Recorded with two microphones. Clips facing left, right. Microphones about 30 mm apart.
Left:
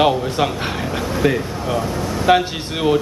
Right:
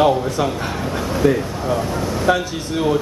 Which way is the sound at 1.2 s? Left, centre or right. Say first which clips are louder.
Right 2 dB; left.